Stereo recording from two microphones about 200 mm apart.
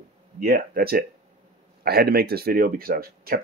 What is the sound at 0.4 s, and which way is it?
Speech, 45° right (ahead or behind).